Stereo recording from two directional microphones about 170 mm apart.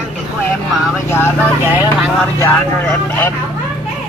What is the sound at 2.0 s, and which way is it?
Speech, 5° left (ahead or behind).